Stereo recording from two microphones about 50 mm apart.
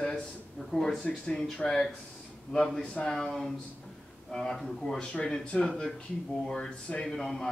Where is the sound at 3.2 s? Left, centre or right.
Centre.